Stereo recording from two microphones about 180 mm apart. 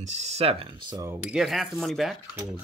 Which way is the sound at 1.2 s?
Centre (ahead or behind).